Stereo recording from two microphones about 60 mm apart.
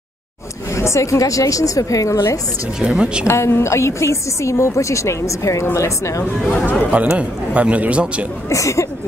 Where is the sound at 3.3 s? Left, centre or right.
Left.